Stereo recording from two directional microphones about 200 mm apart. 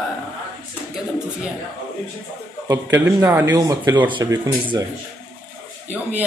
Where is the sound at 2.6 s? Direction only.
15° right (ahead or behind).